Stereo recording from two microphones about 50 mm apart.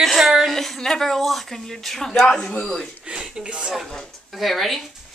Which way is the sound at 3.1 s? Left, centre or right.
Centre.